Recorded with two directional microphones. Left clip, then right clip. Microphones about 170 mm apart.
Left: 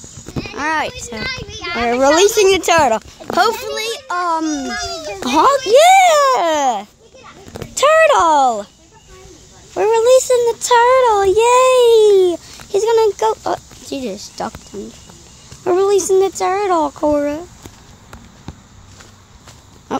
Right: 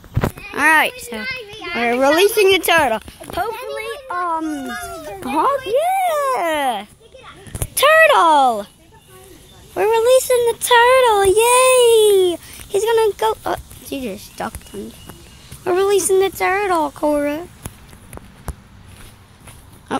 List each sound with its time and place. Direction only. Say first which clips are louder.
0.6 s a sound: right 5 dB; 10° right (ahead or behind)
1.2 s a child's voice: left 3 dB; 30° left (ahead or behind)
1.9 s speech: left 2 dB; 5° left (ahead or behind)
3.7 s a child's voice: left 4 dB; 25° left (ahead or behind)
5.7 s a child's voice: left 9 dB; 55° left (ahead or behind)
6.0 s a child's voice: left 7 dB; 30° left (ahead or behind)
6.3 s speech: left 4 dB; 20° left (ahead or behind); by 8.6 s centre (ahead or behind)
9.8 s a child's voice: left 2 dB; 10° left (ahead or behind)
14.7 s speech: left 2 dB; 10° left (ahead or behind)
19.9 s a sound: left 1 dB; 15° left (ahead or behind)